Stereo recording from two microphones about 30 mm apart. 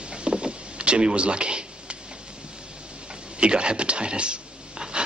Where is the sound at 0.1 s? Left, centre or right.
Right.